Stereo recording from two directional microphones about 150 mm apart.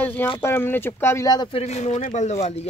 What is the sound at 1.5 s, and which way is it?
Speech, 45° left (ahead or behind).